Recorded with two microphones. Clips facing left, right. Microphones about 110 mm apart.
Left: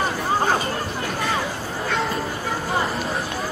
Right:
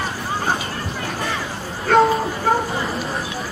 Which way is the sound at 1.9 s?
45° right (ahead or behind).